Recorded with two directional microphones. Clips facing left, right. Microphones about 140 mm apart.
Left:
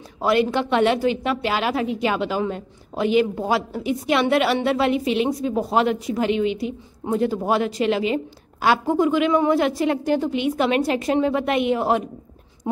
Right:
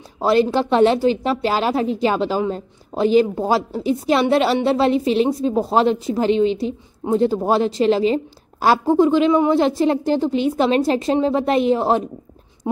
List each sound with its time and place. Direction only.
0.2 s a woman's voice: 30° right (ahead or behind)
9.3 s a woman's voice: 20° right (ahead or behind)
9.6 s a woman's voice: 30° right (ahead or behind)